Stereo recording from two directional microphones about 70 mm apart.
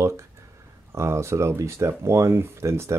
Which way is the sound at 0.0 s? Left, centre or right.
Right.